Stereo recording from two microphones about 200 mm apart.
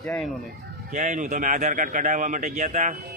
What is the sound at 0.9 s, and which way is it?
Speech, 35° right (ahead or behind).